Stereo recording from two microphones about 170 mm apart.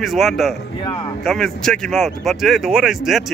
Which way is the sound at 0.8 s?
25° left (ahead or behind).